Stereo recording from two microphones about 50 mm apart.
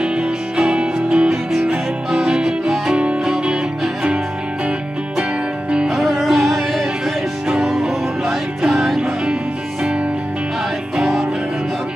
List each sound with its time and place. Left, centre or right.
0.0 s music: centre
1.3 s music: centre
5.9 s music: centre
11.0 s music: centre